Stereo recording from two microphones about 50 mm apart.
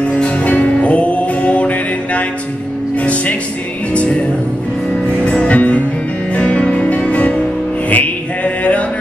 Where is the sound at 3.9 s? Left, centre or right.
Left.